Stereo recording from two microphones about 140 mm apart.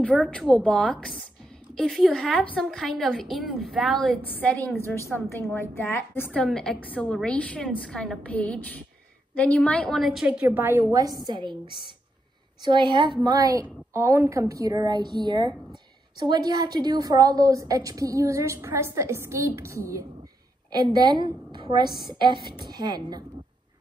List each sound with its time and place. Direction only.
0.0 s a woman's voice: 10° left (ahead or behind); by 23.2 s 30° right (ahead or behind)